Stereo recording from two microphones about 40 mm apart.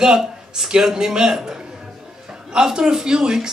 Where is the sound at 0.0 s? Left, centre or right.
Centre.